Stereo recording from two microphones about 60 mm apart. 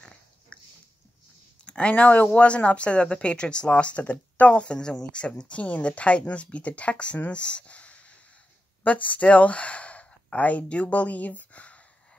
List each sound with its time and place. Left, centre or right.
0.0 s pig: centre
1.6 s speech: centre
7.2 s a sound: centre
8.8 s speech: left